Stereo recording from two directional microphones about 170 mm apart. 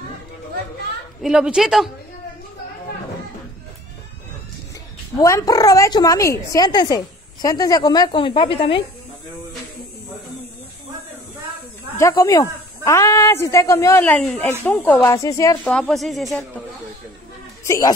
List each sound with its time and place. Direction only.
1.2 s speech: 5° right (ahead or behind)
5.2 s a woman's voice: 20° left (ahead or behind)
12.0 s speech: 20° left (ahead or behind)
15.6 s speech: 5° left (ahead or behind)
17.6 s speech: 20° left (ahead or behind)